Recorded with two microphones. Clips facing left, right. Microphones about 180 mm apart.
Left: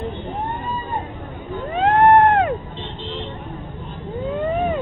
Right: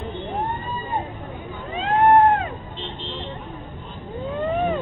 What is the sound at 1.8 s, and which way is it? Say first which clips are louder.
Cat: left 2 dB; 65° left (ahead or behind).